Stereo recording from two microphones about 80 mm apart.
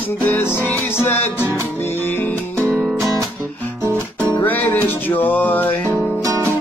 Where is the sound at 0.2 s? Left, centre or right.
Left.